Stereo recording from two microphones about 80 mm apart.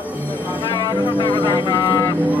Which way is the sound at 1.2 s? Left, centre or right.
Left.